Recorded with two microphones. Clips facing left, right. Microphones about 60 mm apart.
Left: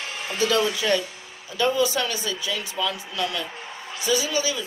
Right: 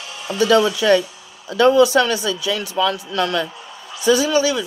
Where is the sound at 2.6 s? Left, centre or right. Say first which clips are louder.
Right 8 dB; right.